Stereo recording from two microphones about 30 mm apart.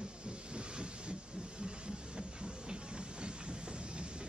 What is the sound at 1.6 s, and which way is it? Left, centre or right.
Train, right.